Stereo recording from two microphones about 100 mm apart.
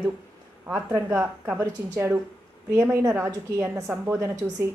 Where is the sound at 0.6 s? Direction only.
25° right (ahead or behind).